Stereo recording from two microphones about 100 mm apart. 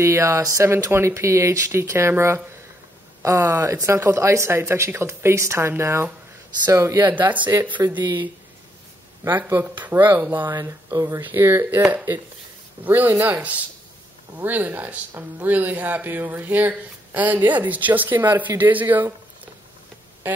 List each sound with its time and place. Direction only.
0.0 s speech: 25° right (ahead or behind)
7.0 s speech: 20° right (ahead or behind)
9.3 s speech: 20° right (ahead or behind)
10.5 s speech: 35° right (ahead or behind)
11.1 s speech: 25° right (ahead or behind)